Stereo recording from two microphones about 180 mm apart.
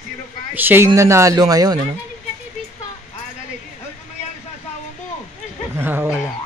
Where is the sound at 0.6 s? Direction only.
10° right (ahead or behind).